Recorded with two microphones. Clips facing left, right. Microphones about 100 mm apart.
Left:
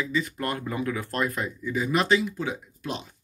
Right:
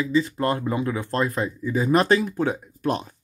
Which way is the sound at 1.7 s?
40° right (ahead or behind).